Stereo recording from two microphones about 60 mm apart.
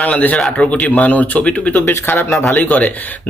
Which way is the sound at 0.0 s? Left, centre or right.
Left.